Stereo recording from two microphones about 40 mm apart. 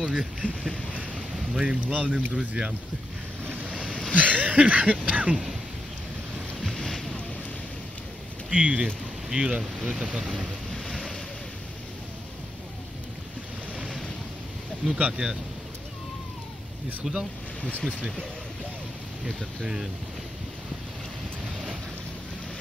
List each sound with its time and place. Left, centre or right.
0.1 s speech: right
1.3 s boat: centre
1.9 s a sound: right
2.3 s speech: right
3.6 s a sound: right
4.1 s a sound: right
6.6 s boat: centre
8.5 s a sound: right
9.3 s speech: right
10.7 s vehicle: centre
15.0 s speech: right
17.0 s speech: centre
17.6 s speech: left
19.6 s speech: centre